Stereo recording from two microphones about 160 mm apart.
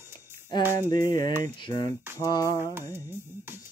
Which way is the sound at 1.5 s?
30° left (ahead or behind).